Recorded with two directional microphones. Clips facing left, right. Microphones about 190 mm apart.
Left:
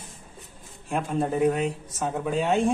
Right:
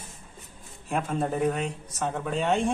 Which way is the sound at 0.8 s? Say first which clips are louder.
Left 1 dB; centre (ahead or behind).